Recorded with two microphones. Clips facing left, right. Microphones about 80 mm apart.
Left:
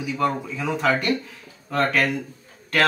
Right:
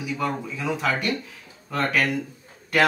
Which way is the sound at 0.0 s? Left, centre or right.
Centre.